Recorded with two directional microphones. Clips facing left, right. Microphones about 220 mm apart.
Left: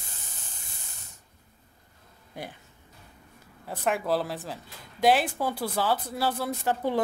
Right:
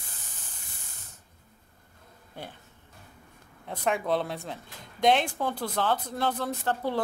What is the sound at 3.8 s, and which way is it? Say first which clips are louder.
Speech: even; 5° left (ahead or behind).